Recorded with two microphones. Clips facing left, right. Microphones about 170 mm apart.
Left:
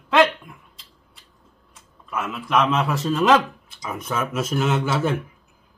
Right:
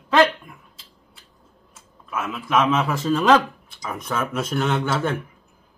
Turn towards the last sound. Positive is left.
turn(degrees=5)  # may be behind; listen again after turning